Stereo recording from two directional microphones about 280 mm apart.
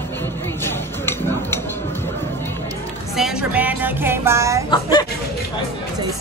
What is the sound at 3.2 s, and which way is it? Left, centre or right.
Speech, centre.